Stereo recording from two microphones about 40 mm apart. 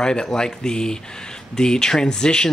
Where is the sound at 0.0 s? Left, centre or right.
Centre.